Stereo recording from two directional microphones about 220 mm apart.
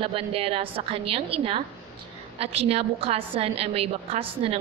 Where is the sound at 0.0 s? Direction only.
25° right (ahead or behind).